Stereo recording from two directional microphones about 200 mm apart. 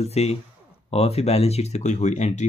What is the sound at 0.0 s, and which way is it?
Speech, 30° left (ahead or behind).